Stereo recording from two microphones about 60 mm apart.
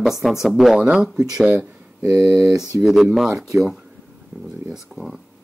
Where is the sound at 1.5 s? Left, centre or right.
Right.